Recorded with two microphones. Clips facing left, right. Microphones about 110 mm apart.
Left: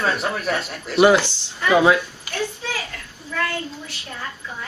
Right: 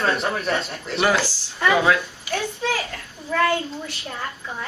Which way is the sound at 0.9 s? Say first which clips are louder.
Left 6 dB; 20° left (ahead or behind).